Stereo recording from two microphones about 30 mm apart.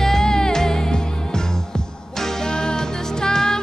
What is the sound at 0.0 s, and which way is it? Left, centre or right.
Music, centre.